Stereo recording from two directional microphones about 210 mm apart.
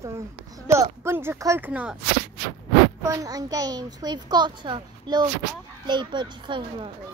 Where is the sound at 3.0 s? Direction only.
15° right (ahead or behind).